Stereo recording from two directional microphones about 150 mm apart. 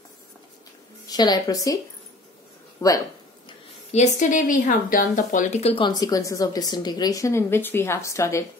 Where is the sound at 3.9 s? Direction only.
50° left (ahead or behind).